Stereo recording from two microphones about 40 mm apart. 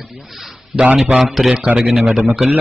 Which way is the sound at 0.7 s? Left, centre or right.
Right.